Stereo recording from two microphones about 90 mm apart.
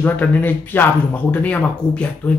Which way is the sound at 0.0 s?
20° left (ahead or behind).